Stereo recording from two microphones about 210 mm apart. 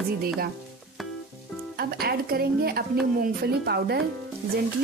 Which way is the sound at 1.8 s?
45° right (ahead or behind).